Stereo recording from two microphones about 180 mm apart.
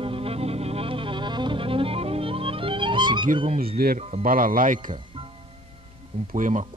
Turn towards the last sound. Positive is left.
turn(degrees=-45)  # may be behind; listen again after turning